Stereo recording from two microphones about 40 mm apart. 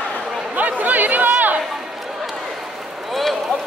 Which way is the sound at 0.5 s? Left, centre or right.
Right.